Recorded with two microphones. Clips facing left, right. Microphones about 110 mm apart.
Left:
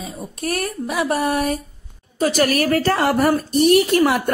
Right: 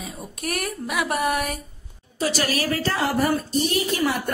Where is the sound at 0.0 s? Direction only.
30° left (ahead or behind).